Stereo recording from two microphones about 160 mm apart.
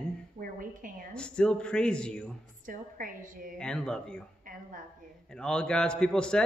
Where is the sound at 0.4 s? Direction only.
60° right (ahead or behind).